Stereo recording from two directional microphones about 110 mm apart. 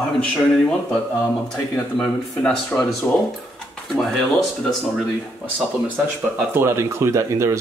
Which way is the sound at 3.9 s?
Centre (ahead or behind).